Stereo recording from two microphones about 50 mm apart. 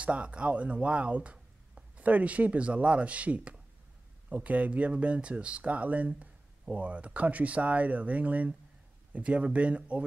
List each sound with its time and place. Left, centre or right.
0.0 s speech: right